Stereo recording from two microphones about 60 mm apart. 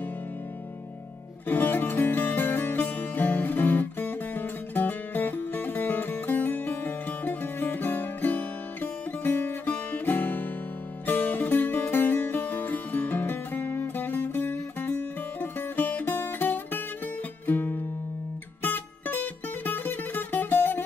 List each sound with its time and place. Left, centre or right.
1.5 s music: left